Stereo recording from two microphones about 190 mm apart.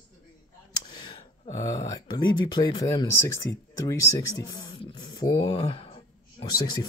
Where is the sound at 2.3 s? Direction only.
20° left (ahead or behind).